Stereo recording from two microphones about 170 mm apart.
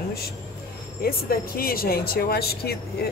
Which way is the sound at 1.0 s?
60° left (ahead or behind).